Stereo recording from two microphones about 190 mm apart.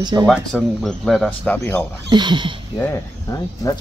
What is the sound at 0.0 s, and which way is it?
Speech, 20° right (ahead or behind).